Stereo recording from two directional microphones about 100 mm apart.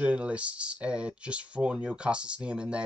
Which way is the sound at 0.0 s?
10° right (ahead or behind).